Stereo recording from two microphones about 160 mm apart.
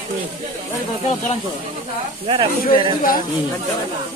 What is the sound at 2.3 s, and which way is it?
Speech, 30° right (ahead or behind).